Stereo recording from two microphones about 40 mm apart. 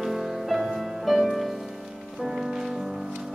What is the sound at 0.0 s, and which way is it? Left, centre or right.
Music, centre.